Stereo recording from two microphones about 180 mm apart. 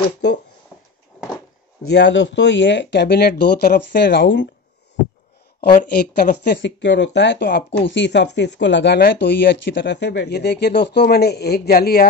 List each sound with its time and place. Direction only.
1.9 s speech: 75° left (ahead or behind)
5.8 s speech: 45° left (ahead or behind)
6.4 s speech: 75° left (ahead or behind); by 7.6 s 60° left (ahead or behind)
7.8 s speech: 80° left; by 12.1 s 55° left (ahead or behind)